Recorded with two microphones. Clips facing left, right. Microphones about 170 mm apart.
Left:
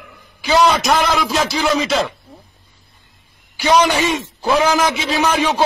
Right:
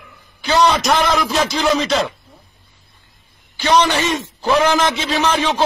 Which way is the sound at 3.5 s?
10° left (ahead or behind).